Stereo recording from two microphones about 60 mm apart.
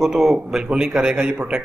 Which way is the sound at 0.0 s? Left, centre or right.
Centre.